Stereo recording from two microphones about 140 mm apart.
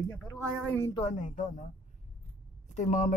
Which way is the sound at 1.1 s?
60° left (ahead or behind).